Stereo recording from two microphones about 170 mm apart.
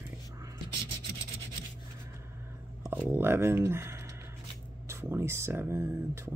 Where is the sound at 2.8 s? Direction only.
15° right (ahead or behind).